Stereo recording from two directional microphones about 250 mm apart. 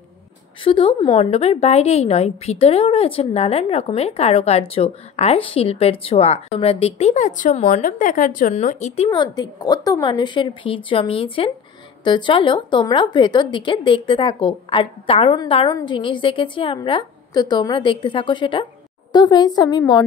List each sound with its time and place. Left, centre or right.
0.7 s a woman's voice: left